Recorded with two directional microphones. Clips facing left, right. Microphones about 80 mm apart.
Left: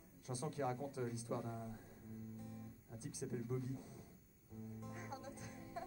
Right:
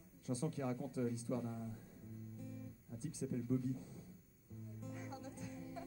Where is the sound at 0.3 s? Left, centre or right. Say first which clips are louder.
Right 1 dB; left.